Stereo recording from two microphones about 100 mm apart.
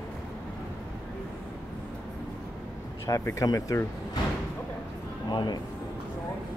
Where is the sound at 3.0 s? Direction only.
30° left (ahead or behind).